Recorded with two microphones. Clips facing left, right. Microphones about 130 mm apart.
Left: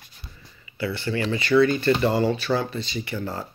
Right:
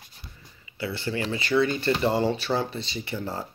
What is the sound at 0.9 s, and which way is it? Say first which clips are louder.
Speech: left 3 dB; 25° right (ahead or behind).